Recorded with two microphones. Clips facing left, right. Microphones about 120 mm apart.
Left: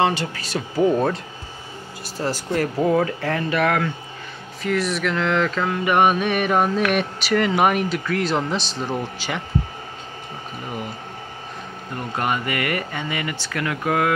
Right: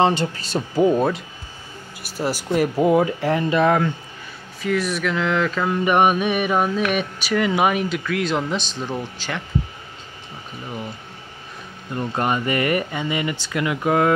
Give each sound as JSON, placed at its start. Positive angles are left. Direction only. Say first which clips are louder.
{"t": 0.0, "sound": "speech", "louder": "right 2 dB", "side_deg": -25}
{"t": 0.9, "sound": "speech", "louder": "right 1 dB", "side_deg": -5}
{"t": 4.6, "sound": "speech", "louder": "even", "side_deg": 0}
{"t": 5.7, "sound": "speech", "louder": "right 1 dB", "side_deg": -15}
{"t": 12.2, "sound": "speech", "louder": "right 2 dB", "side_deg": -25}